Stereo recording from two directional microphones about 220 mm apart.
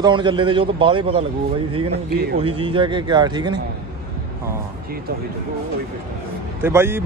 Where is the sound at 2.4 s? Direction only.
25° right (ahead or behind).